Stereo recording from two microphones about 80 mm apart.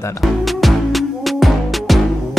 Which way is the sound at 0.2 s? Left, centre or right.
Centre.